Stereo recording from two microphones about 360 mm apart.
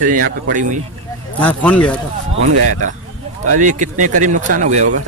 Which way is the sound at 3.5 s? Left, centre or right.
Right.